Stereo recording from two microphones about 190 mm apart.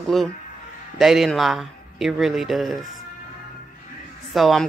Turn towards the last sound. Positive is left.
turn(degrees=0)  # may be behind; listen again after turning